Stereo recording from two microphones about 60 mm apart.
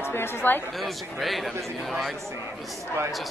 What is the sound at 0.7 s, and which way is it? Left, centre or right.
A man's voice, centre.